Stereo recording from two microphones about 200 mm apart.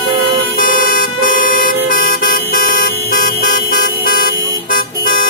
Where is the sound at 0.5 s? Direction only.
45° left (ahead or behind).